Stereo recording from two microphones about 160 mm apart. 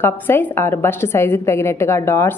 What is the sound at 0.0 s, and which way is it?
A woman's voice, 15° left (ahead or behind).